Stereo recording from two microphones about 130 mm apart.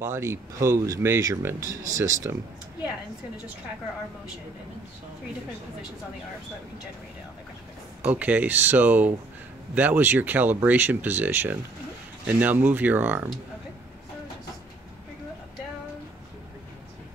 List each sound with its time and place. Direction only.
0.0 s speech: 20° right (ahead or behind)
8.0 s speech: 15° right (ahead or behind)